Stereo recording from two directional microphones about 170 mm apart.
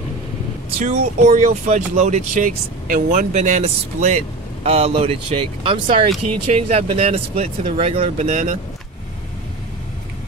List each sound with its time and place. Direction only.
0.8 s speech: 50° right (ahead or behind)